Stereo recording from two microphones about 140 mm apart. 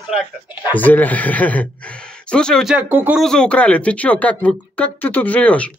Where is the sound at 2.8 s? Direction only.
10° right (ahead or behind).